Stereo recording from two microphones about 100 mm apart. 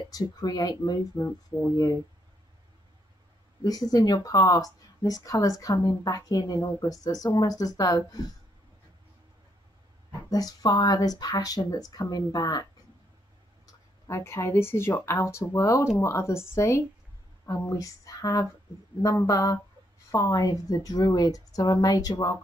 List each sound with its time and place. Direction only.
0.1 s speech: 40° left (ahead or behind)
3.6 s speech: 40° left (ahead or behind)
10.3 s speech: 40° left (ahead or behind)
14.0 s speech: 30° left (ahead or behind)